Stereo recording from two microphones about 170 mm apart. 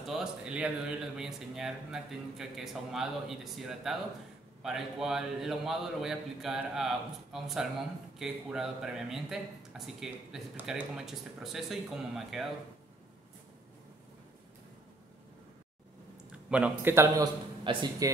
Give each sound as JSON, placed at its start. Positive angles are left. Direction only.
{"t": 0.0, "sound": "speech", "side_deg": -5}
{"t": 16.3, "sound": "a man's voice", "side_deg": -5}